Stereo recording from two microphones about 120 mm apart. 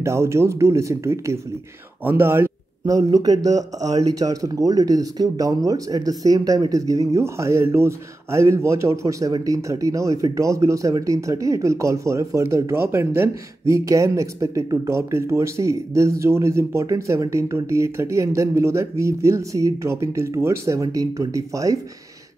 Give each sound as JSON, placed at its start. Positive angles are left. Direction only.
{"t": 0.0, "sound": "speech", "side_deg": -25}
{"t": 2.8, "sound": "speech", "side_deg": -30}